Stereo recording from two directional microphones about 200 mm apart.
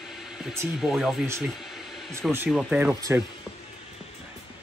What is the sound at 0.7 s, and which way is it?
Speech, centre (ahead or behind).